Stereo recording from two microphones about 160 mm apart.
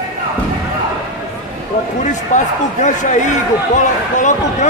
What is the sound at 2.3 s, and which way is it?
Speech, 50° left (ahead or behind).